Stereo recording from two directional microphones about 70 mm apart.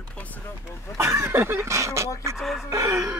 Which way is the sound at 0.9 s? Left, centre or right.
Right.